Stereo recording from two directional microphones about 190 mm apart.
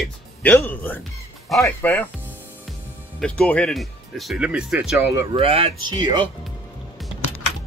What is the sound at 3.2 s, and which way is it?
Speech, 5° left (ahead or behind).